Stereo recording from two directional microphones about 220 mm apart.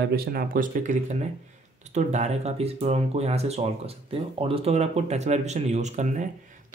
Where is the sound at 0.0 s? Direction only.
45° right (ahead or behind).